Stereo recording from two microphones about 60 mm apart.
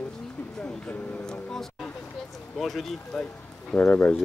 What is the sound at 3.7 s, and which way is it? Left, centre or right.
Speech, left.